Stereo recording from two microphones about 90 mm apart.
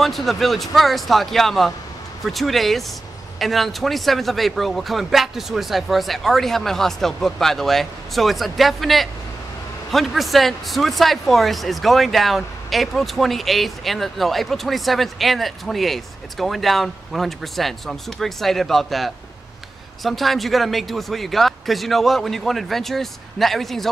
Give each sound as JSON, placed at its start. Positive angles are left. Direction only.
{"t": 0.0, "sound": "speech", "side_deg": 0}